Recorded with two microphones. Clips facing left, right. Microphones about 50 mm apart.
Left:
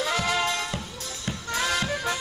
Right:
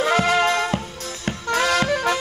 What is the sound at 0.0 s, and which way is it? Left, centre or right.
Music, right.